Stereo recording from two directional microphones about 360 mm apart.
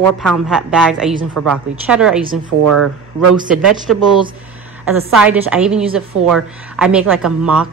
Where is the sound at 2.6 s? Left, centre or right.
Right.